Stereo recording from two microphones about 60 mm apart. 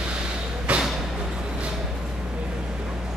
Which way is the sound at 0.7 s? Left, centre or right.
Right.